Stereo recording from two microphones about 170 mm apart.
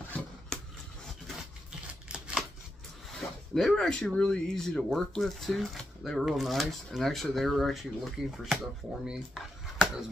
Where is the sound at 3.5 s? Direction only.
Centre (ahead or behind).